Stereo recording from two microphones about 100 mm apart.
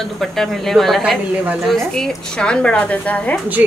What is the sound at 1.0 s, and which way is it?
Speech, 10° right (ahead or behind).